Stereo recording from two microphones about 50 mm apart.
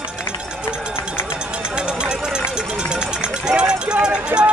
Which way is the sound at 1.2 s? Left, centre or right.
Right.